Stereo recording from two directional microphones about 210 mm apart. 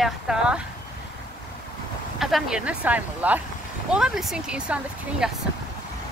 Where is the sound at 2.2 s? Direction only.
5° right (ahead or behind).